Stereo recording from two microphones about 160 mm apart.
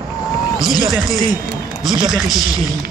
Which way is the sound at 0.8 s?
Centre (ahead or behind).